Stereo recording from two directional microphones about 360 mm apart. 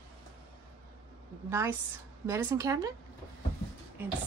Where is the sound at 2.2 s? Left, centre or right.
Centre.